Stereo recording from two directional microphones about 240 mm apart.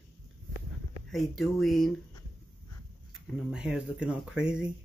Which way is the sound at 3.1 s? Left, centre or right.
Centre.